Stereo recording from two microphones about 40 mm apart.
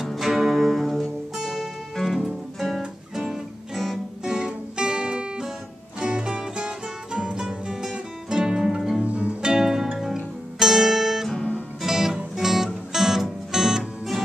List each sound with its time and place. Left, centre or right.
0.1 s music: centre
2.0 s music: centre
3.7 s music: centre
4.2 s music: centre
9.0 s music: right
9.4 s music: centre